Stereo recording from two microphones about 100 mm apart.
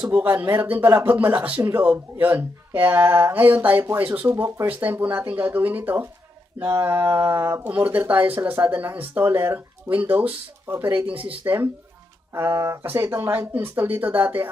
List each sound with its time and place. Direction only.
0.0 s speech: 15° right (ahead or behind)